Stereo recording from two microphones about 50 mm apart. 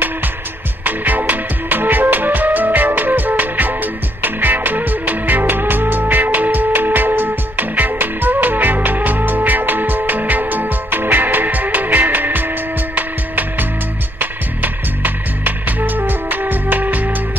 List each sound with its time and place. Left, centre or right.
0.8 s music: right